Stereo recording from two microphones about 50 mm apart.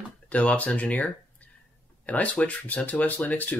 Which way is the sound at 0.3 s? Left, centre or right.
Left.